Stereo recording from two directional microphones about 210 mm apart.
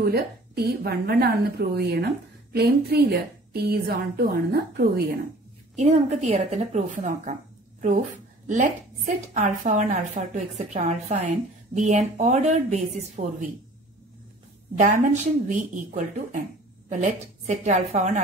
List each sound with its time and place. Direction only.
0.0 s a woman's voice: 45° right (ahead or behind)
5.8 s a woman's voice: 30° right (ahead or behind)
8.5 s a woman's voice: 35° right (ahead or behind)
14.8 s a woman's voice: 35° right (ahead or behind)